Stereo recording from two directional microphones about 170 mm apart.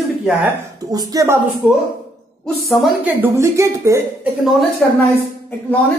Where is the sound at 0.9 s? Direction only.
20° right (ahead or behind).